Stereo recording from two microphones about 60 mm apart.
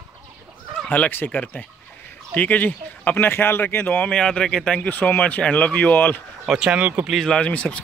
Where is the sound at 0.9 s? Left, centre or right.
Left.